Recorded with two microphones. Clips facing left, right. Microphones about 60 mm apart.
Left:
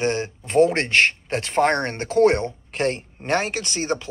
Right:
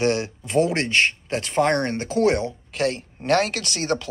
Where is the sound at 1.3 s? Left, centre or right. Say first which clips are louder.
Left 1 dB; left.